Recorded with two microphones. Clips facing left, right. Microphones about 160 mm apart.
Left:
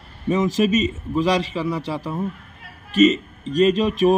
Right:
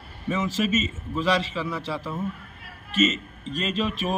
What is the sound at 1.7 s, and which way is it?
Speech, 15° left (ahead or behind).